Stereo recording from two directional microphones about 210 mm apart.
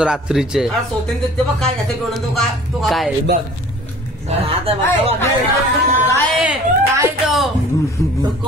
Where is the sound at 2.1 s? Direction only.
Centre (ahead or behind).